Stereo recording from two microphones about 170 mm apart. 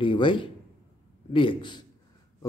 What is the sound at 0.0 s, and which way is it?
A man's voice, 30° left (ahead or behind).